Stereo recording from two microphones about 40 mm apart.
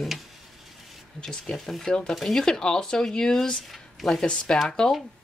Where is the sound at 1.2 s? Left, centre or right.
Centre.